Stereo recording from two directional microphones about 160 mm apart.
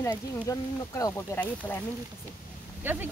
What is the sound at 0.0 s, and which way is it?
Speech, 20° left (ahead or behind).